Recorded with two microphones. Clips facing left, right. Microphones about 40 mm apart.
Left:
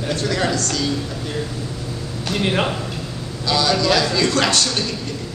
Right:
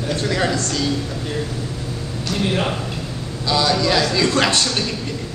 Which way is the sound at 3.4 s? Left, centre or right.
Centre.